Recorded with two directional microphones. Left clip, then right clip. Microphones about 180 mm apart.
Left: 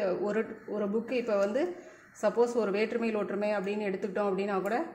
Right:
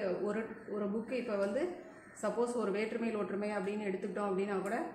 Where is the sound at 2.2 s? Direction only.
40° left (ahead or behind).